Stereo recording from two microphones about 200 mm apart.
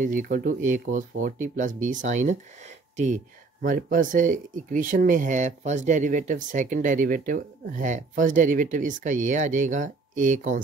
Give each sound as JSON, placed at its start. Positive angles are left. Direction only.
{"t": 0.0, "sound": "speech", "side_deg": -40}